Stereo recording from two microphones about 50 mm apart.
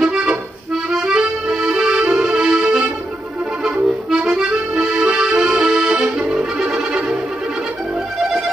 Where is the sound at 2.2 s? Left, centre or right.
Centre.